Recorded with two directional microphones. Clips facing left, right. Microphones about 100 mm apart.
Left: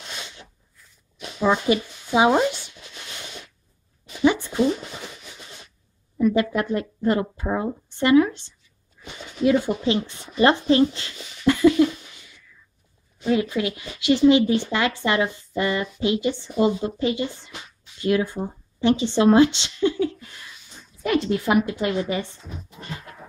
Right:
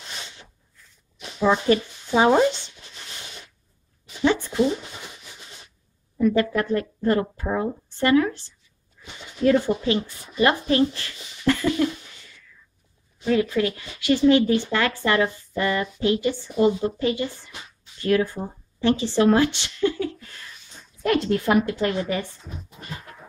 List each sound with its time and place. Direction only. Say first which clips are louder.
1.7 s speech: right 1 dB; 10° left (ahead or behind)
4.2 s a sound: left 2 dB; 15° left (ahead or behind)
6.1 s a sound: even; 10° left (ahead or behind)
6.5 s speech: right 1 dB; 20° left (ahead or behind)
9.4 s a woman's voice: right 1 dB; 10° left (ahead or behind)
10.0 s speech: left 5 dB; 25° left (ahead or behind)
11.8 s a sound: left 4 dB; 15° left (ahead or behind)
13.3 s speech: right 1 dB; 20° left (ahead or behind)
21.0 s a woman's voice: right 1 dB; 5° left (ahead or behind)